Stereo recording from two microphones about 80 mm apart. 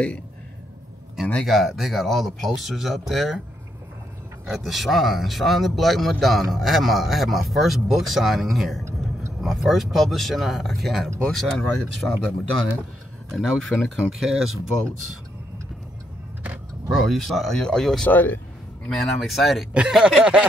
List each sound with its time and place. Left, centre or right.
1.2 s speech: centre
1.5 s a man's voice: centre
4.5 s a man's voice: centre
13.3 s a man's voice: centre
16.9 s a man's voice: centre
18.0 s speech: left
18.9 s a man's voice: centre
19.7 s speech: centre